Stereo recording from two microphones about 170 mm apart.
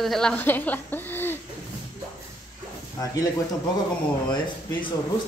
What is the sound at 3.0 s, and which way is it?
Speech, 20° left (ahead or behind).